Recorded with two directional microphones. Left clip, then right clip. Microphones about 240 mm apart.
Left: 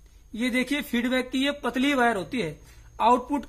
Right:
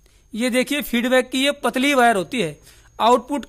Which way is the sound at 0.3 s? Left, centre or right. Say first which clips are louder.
Right 6 dB; right.